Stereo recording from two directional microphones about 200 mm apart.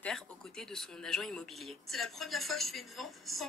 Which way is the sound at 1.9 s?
Centre (ahead or behind).